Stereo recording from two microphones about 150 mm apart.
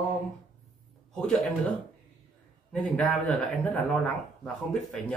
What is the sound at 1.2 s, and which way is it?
Speech, 5° left (ahead or behind).